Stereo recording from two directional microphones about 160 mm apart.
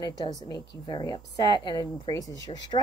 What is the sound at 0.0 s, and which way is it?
A woman's voice, 25° left (ahead or behind).